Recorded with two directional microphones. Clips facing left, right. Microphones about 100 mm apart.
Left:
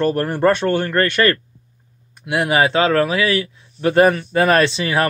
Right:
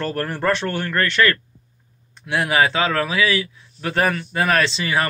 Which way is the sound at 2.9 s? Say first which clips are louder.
Left 4 dB; 30° left (ahead or behind).